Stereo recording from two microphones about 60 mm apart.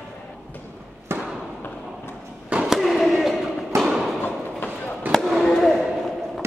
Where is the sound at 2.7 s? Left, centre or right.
Centre.